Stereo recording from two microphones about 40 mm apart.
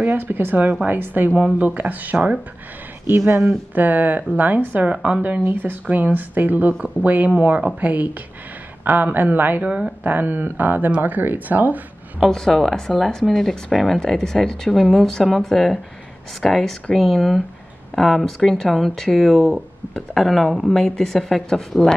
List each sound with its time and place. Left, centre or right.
0.2 s speech: right
3.1 s speech: right
3.4 s speech: right
4.8 s speech: right
5.4 s speech: right
5.9 s speech: right
6.8 s speech: right
7.2 s speech: right
9.6 s speech: right
10.0 s speech: right
12.3 s speech: centre
14.7 s speech: centre
18.2 s speech: centre
20.7 s speech: centre